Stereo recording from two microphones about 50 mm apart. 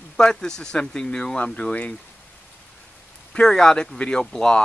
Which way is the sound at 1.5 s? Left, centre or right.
Left.